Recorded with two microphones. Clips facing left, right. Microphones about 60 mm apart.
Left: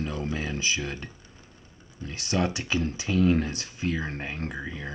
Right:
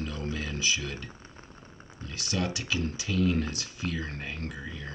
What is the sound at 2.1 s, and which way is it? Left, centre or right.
Speech, left.